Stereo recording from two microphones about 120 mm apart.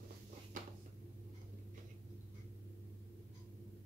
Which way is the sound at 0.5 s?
90° right.